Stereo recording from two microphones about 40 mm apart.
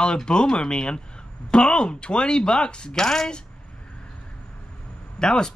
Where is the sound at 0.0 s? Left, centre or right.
Left.